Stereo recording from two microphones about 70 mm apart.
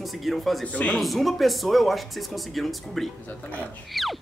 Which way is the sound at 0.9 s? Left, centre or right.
Centre.